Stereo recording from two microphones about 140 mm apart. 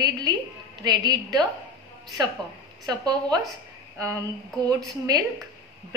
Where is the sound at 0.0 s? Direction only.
30° right (ahead or behind).